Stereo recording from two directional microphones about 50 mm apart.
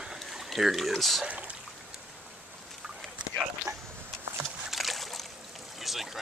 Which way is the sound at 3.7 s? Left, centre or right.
Right.